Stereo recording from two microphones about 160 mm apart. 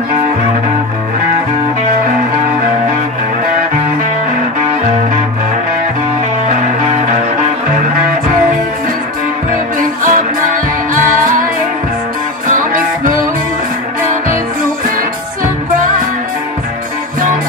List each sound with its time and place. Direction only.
9.5 s music: 55° right (ahead or behind)
12.4 s music: 55° right (ahead or behind)